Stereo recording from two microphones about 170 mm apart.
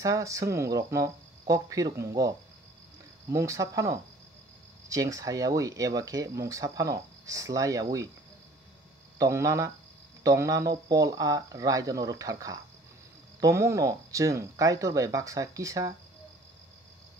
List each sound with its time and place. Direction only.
0.0 s speech: 20° right (ahead or behind)
9.2 s speech: 20° right (ahead or behind)